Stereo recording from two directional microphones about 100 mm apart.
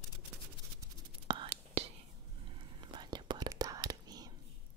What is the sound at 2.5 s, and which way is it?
Whispering, 55° right (ahead or behind).